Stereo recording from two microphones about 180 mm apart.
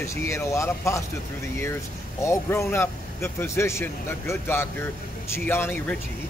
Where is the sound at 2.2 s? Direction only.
15° left (ahead or behind).